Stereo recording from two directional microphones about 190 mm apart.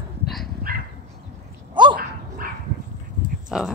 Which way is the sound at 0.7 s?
50° right (ahead or behind).